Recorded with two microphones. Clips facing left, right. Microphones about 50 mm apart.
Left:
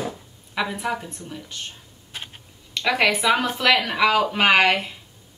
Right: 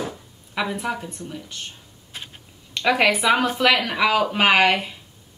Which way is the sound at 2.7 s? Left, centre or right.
Centre.